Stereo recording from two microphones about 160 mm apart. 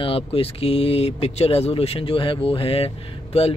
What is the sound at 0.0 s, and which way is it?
Speech, 35° left (ahead or behind).